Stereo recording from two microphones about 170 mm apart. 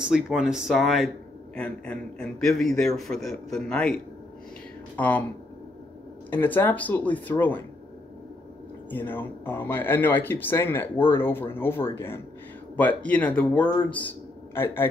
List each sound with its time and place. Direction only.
0.0 s speech: 5° right (ahead or behind)
4.9 s speech: 10° left (ahead or behind)
6.3 s speech: 10° left (ahead or behind)
8.9 s a man's voice: 10° left (ahead or behind)